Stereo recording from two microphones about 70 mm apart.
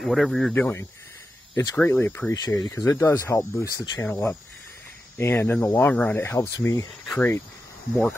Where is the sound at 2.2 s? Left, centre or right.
Centre.